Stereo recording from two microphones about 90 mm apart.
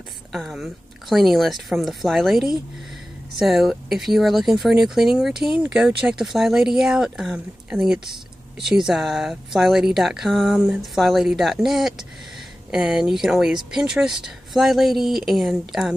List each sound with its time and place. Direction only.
0.3 s speech: centre (ahead or behind)
10.5 s a sound: 15° right (ahead or behind)
10.8 s speech: centre (ahead or behind)